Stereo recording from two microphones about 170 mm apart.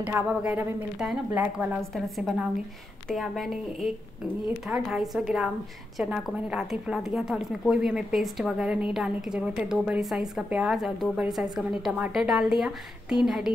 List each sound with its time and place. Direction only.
0.0 s a woman's voice: 10° right (ahead or behind)